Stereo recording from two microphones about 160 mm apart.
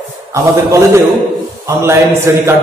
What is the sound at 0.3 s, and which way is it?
A man's voice, 20° right (ahead or behind).